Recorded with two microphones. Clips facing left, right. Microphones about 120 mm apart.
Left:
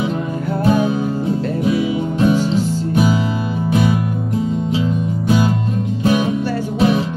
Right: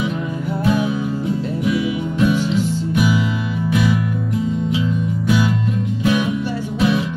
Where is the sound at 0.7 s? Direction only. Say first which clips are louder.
Left 3 dB; 35° left (ahead or behind).